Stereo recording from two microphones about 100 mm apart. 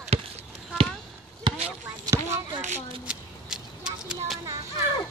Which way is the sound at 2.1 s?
40° right (ahead or behind).